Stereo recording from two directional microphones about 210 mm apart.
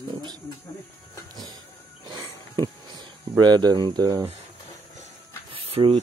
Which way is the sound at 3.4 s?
20° right (ahead or behind).